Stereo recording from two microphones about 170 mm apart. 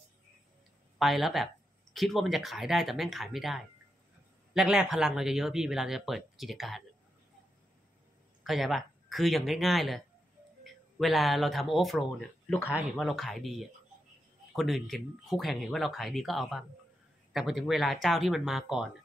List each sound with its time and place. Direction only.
0.9 s speech: centre (ahead or behind)
8.5 s speech: centre (ahead or behind)